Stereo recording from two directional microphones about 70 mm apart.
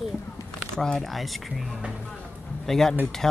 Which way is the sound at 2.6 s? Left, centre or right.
Centre.